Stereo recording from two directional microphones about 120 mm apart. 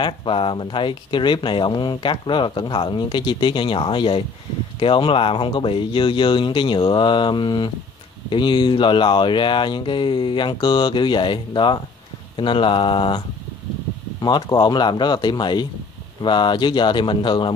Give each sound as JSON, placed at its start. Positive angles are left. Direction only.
{"t": 0.0, "sound": "speech", "side_deg": 45}
{"t": 14.2, "sound": "speech", "side_deg": 35}